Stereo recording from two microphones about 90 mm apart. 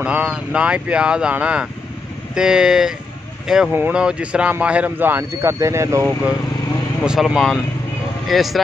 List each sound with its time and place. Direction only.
0.0 s speech: 15° right (ahead or behind); by 6.1 s 30° right (ahead or behind)
7.1 s speech: 5° right (ahead or behind)